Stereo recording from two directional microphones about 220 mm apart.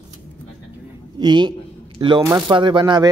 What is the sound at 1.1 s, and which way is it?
A man's voice, 20° right (ahead or behind).